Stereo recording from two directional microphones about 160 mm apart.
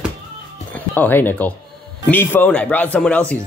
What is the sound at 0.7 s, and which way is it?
Speech, 10° left (ahead or behind).